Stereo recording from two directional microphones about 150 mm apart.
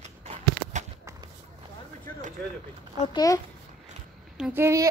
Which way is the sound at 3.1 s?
20° left (ahead or behind).